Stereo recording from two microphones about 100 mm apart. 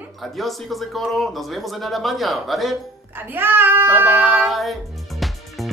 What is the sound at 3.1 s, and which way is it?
Speech, 20° right (ahead or behind).